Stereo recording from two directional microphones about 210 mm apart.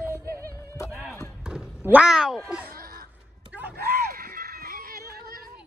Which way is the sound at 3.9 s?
45° right (ahead or behind).